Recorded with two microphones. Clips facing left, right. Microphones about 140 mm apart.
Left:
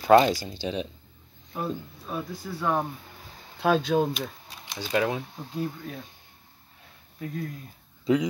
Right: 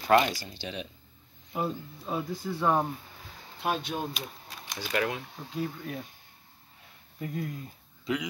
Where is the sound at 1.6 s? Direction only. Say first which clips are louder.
Even; 20° right (ahead or behind).